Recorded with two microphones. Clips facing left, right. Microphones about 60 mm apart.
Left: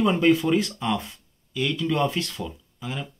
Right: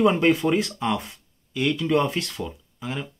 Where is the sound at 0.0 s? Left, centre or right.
Right.